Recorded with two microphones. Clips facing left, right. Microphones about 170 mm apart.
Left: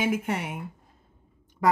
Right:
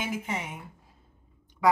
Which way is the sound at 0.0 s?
55° left (ahead or behind).